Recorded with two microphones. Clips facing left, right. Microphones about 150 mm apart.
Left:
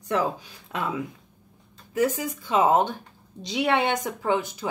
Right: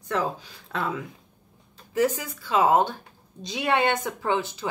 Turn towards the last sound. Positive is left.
turn(degrees=15)  # may be behind; listen again after turning